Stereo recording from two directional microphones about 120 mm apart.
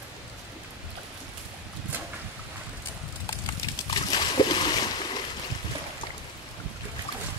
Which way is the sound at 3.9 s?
40° left (ahead or behind).